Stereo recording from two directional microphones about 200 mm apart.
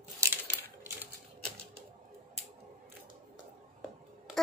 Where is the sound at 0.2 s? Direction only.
15° right (ahead or behind).